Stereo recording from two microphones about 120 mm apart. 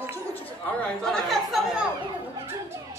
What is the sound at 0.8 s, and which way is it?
Speech, 5° left (ahead or behind).